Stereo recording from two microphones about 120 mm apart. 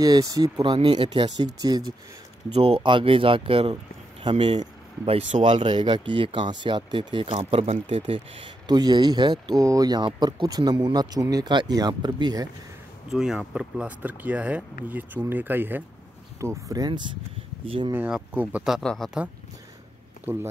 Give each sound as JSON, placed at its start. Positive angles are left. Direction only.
{"t": 0.0, "sound": "speech", "side_deg": -30}
{"t": 0.7, "sound": "speech", "side_deg": -55}
{"t": 1.0, "sound": "speech", "side_deg": -40}
{"t": 2.5, "sound": "speech", "side_deg": -55}
{"t": 8.6, "sound": "speech", "side_deg": -35}
{"t": 13.1, "sound": "speech", "side_deg": -5}
{"t": 18.1, "sound": "speech", "side_deg": -10}
{"t": 20.3, "sound": "speech", "side_deg": -15}